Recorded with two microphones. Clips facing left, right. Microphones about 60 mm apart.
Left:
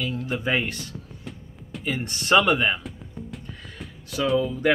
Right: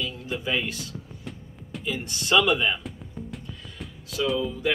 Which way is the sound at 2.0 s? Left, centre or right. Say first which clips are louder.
Left 3 dB; left.